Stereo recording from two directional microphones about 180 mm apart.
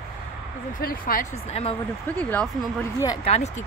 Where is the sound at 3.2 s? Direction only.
35° left (ahead or behind).